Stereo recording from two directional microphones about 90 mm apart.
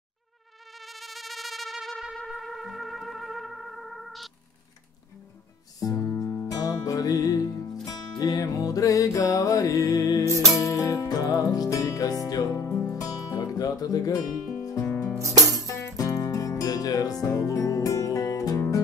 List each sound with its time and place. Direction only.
0.7 s music: centre (ahead or behind)
5.8 s music: 40° left (ahead or behind)
14.3 s music: centre (ahead or behind)
14.6 s music: 40° left (ahead or behind)
15.1 s music: 35° right (ahead or behind)
15.6 s music: 35° left (ahead or behind)